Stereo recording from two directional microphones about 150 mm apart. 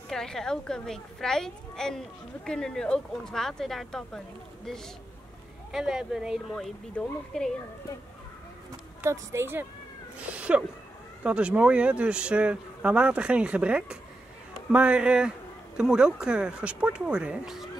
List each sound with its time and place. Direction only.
0.1 s speech: 5° left (ahead or behind)
5.7 s speech: 5° right (ahead or behind)
9.0 s speech: 15° right (ahead or behind)